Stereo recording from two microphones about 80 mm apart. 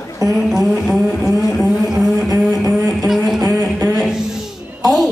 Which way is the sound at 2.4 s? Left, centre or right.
Centre.